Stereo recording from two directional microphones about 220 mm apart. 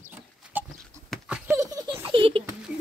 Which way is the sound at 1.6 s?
15° right (ahead or behind).